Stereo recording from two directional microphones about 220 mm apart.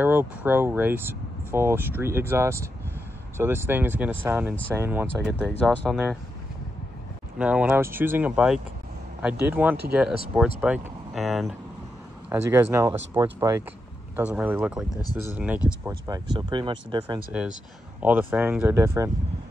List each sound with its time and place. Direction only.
0.0 s speech: 10° right (ahead or behind)
5.5 s speech: 5° left (ahead or behind)
7.3 s speech: 5° right (ahead or behind)
16.3 s speech: 20° right (ahead or behind)
17.3 s speech: 5° right (ahead or behind)